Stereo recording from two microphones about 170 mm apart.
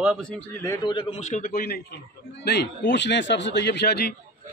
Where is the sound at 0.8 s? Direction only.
30° left (ahead or behind); by 4.1 s 70° left (ahead or behind).